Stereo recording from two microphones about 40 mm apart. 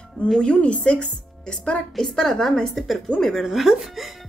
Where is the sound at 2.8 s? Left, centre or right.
Centre.